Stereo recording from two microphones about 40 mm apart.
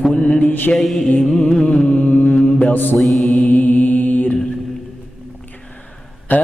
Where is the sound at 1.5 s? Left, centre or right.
Centre.